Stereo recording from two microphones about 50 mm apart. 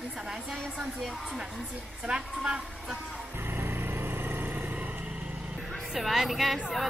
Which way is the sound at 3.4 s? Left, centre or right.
Right.